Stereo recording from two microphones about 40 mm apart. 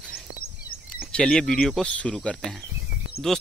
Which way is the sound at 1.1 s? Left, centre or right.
Left.